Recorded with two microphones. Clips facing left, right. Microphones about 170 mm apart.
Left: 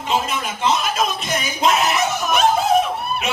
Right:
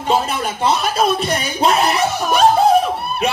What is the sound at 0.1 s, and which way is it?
A man's voice, 35° right (ahead or behind).